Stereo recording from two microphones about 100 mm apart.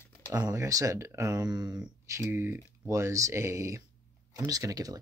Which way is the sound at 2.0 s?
30° right (ahead or behind).